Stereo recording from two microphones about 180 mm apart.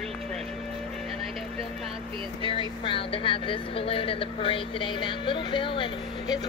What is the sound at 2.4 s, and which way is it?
Speech, 30° left (ahead or behind).